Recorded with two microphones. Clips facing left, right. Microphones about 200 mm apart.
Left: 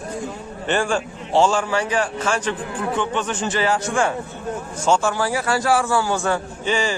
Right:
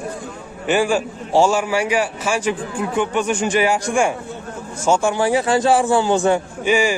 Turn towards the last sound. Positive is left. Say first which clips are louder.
# right 5 dB
turn(degrees=-10)  # may be behind; listen again after turning